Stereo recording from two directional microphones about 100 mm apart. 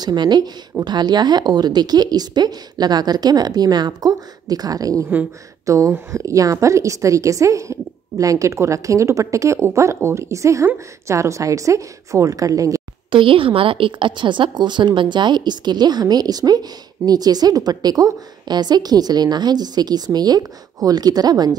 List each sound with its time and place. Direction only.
0.0 s a woman's voice: 45° right (ahead or behind)
13.1 s a woman's voice: 60° right (ahead or behind); by 21.5 s 40° right (ahead or behind)